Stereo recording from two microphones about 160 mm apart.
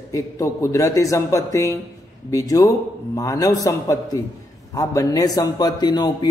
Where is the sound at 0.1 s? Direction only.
20° left (ahead or behind).